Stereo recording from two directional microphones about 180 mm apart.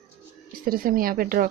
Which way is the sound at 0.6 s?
55° right (ahead or behind).